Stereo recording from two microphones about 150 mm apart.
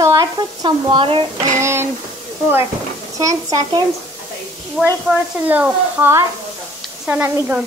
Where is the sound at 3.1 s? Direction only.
20° right (ahead or behind).